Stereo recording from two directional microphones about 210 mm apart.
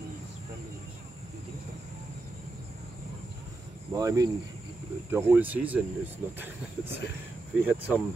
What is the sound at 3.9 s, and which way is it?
Speech, 15° right (ahead or behind).